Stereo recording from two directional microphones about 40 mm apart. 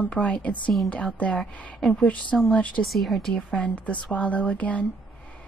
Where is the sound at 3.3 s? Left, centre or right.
Left.